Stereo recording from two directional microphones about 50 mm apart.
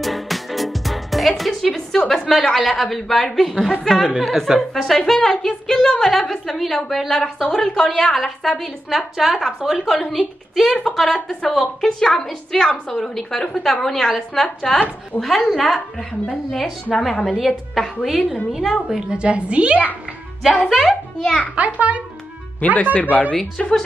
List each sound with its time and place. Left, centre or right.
0.0 s music: centre
2.0 s a woman's voice: centre
11.1 s a woman's voice: centre
11.5 s a woman's voice: centre; by 19.8 s right
20.6 s a woman's voice: centre
21.5 s a woman's voice: right
22.6 s speech: left
23.3 s a woman's voice: centre